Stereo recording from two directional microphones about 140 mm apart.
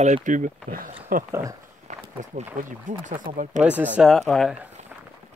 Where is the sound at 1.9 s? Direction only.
55° right (ahead or behind).